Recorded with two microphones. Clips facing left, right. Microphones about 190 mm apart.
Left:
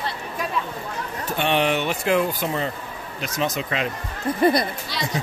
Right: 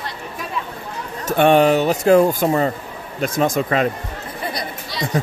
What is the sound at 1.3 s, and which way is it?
Speech, 45° right (ahead or behind).